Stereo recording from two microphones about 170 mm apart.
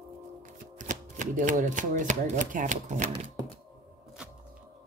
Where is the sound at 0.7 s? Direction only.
50° right (ahead or behind).